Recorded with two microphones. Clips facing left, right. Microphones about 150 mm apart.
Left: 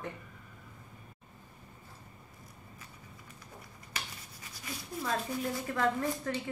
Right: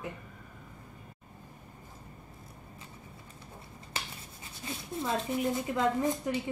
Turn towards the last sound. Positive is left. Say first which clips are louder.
# right 2 dB
turn(degrees=-20)  # may be behind; listen again after turning